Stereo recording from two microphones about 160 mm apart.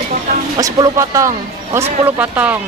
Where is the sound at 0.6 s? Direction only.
20° right (ahead or behind).